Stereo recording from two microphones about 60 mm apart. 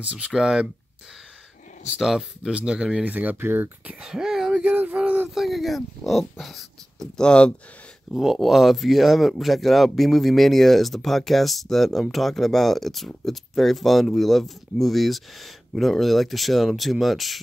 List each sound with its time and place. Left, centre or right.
0.0 s speech: centre
2.0 s speech: centre
3.2 s speech: right
4.0 s a sound: centre
4.6 s a sound: right
5.3 s speech: centre
7.2 s speech: centre
8.1 s speech: centre